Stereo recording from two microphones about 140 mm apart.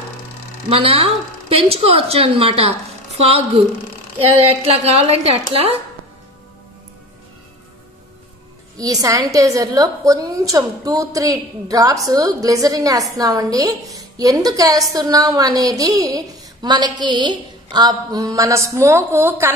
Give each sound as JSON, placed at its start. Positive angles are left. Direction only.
{"t": 0.7, "sound": "speech", "side_deg": -40}
{"t": 4.3, "sound": "speech", "side_deg": -45}
{"t": 8.7, "sound": "a woman's voice", "side_deg": -25}